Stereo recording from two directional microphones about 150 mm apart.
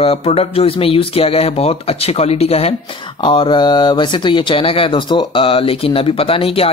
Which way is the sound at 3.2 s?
30° left (ahead or behind).